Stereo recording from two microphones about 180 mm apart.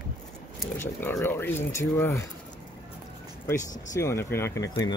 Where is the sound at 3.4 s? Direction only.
15° left (ahead or behind).